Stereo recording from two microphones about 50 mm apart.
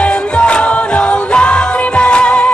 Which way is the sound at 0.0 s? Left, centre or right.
Left.